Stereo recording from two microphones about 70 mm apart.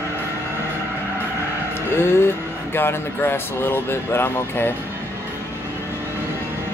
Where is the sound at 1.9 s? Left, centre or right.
Left.